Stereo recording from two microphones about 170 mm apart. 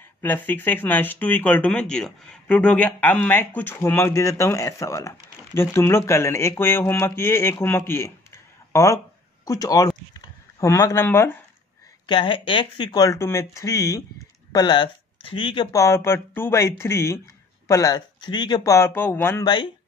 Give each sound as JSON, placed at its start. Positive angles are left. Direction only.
{"t": 0.2, "sound": "speech", "side_deg": 10}
{"t": 8.7, "sound": "a sound", "side_deg": 20}
{"t": 12.1, "sound": "speech", "side_deg": 30}
{"t": 19.4, "sound": "speech", "side_deg": 25}